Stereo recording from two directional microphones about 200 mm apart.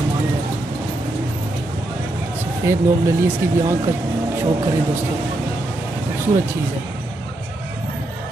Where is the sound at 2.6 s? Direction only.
15° right (ahead or behind).